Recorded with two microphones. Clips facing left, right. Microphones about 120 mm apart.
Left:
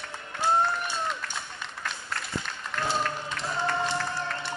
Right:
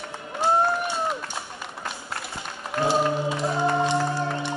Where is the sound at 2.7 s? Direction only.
30° right (ahead or behind).